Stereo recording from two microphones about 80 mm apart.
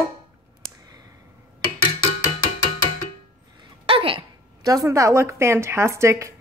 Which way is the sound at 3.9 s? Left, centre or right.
Right.